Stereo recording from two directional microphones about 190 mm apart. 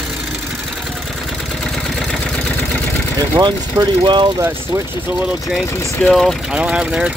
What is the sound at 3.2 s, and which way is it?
Speech, 25° right (ahead or behind).